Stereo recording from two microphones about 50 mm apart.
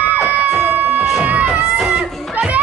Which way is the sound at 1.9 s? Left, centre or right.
Right.